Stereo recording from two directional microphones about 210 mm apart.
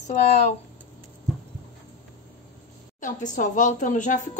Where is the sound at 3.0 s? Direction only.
35° left (ahead or behind).